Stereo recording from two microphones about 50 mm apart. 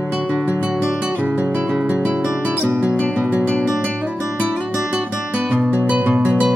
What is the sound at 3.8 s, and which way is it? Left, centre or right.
Guitar, right.